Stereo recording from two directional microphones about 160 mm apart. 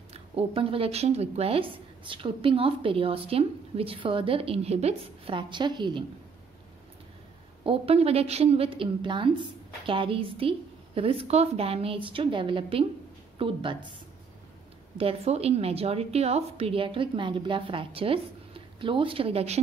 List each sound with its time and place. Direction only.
0.1 s speech: 40° right (ahead or behind)
7.6 s speech: 35° right (ahead or behind)
15.0 s speech: 40° right (ahead or behind)